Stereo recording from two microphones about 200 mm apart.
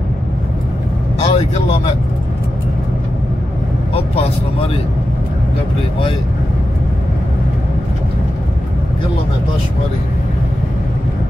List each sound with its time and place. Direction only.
1.2 s vehicle: 30° left (ahead or behind)
3.9 s speech: 30° left (ahead or behind)